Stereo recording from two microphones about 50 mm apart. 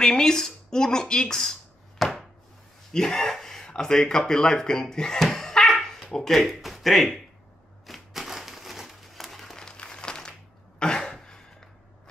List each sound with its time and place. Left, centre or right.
0.0 s a sound: centre
2.9 s speech: centre
5.8 s dog: centre
6.1 s speech: centre
7.8 s a sound: centre
10.8 s throat clearing: centre